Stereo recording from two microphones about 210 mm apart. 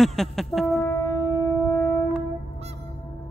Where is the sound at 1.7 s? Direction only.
5° right (ahead or behind).